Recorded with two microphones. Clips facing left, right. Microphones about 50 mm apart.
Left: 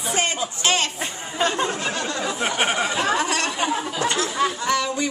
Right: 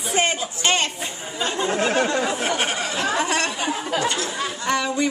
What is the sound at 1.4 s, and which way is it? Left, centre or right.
Speech, left.